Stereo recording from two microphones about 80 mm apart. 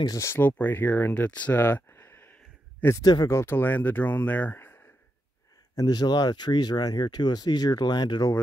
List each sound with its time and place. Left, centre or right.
0.2 s speech: left
3.0 s speech: left
3.3 s speech: left
5.8 s speech: left